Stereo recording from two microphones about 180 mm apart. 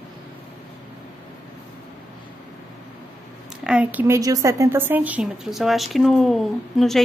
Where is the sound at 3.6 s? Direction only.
5° right (ahead or behind).